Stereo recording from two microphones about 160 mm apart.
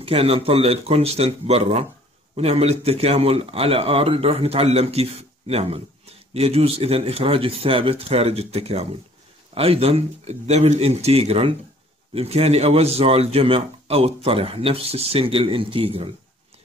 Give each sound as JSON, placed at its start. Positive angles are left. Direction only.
{"t": 0.0, "sound": "a man's voice", "side_deg": -35}